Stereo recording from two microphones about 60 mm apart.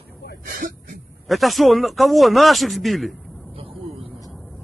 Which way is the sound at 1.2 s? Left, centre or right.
Centre.